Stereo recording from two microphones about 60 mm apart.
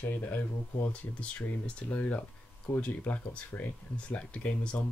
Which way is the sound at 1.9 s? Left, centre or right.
Left.